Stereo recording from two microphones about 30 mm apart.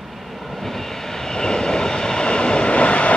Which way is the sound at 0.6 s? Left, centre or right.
Centre.